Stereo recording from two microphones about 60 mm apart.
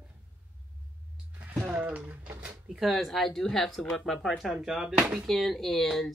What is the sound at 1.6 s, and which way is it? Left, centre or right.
Speech, right.